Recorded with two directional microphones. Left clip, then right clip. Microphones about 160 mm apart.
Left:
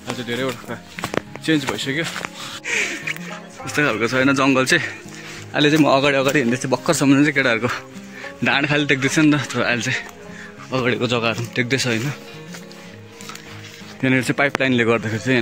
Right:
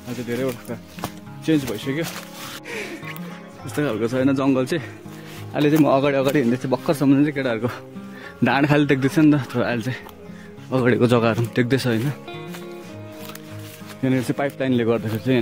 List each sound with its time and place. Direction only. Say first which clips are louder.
0.5 s speech: left 2 dB; centre (ahead or behind)
1.4 s speech: even; 20° right (ahead or behind)
2.6 s music: left 11 dB; centre (ahead or behind)
3.6 s speech: left 4 dB; 15° right (ahead or behind)
8.5 s speech: left 1 dB; 45° right (ahead or behind)
9.0 s speech: left 1 dB; 25° right (ahead or behind)
10.7 s speech: right 1 dB; 45° right (ahead or behind)
11.0 s speech: right 2 dB; 65° right (ahead or behind); by 12.2 s 35° right (ahead or behind)
14.0 s speech: left 4 dB; 10° right (ahead or behind)